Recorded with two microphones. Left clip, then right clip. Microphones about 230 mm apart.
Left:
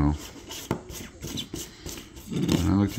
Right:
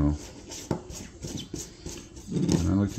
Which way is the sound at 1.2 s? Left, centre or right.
Left.